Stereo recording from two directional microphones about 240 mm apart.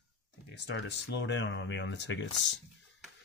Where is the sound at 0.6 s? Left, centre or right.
Left.